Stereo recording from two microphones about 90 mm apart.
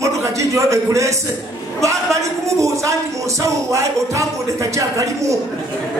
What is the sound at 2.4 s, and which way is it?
Speech, 35° right (ahead or behind).